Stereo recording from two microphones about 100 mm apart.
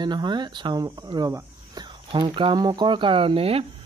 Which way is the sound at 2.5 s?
45° right (ahead or behind).